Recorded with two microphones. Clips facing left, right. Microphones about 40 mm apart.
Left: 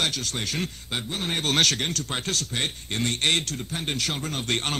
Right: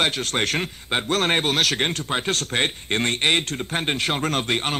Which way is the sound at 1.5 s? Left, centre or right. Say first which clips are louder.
Right 1 dB; centre.